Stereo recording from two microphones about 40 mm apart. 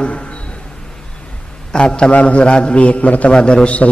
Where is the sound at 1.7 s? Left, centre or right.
Left.